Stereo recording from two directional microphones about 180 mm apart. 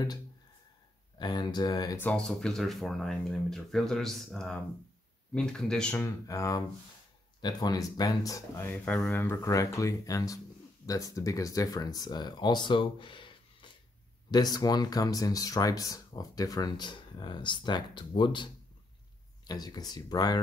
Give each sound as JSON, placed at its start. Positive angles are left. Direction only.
{"t": 1.2, "sound": "speech", "side_deg": 25}
{"t": 2.0, "sound": "speech", "side_deg": 5}